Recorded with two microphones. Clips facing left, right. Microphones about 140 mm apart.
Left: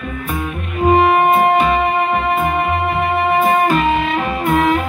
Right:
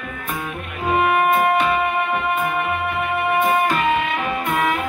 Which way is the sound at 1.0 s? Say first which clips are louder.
Left 5 dB; 30° left (ahead or behind).